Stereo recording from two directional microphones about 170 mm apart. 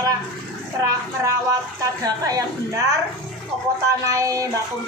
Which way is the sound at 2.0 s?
20° right (ahead or behind).